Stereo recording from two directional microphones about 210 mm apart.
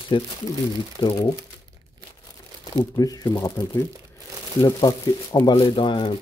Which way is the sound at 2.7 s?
15° left (ahead or behind).